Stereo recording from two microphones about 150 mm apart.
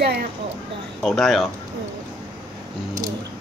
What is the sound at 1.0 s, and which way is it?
Speech, centre (ahead or behind).